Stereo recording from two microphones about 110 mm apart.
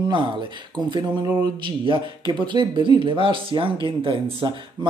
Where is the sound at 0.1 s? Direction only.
45° right (ahead or behind).